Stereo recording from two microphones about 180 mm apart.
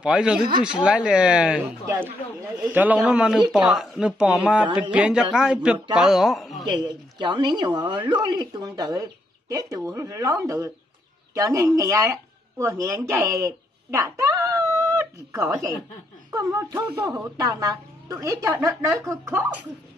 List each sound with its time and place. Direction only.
0.0 s speech: 5° right (ahead or behind)
6.6 s speech: 25° right (ahead or behind)